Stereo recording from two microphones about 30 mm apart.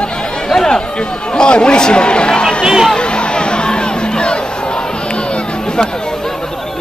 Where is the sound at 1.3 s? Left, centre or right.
Left.